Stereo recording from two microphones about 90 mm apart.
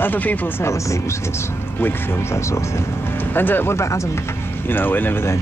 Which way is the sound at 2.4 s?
35° left (ahead or behind).